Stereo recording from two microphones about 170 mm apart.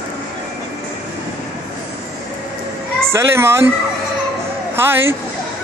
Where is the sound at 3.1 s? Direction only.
15° right (ahead or behind).